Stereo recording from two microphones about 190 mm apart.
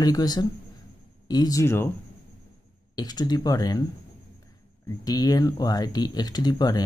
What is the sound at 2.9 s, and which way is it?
Speech, 20° left (ahead or behind).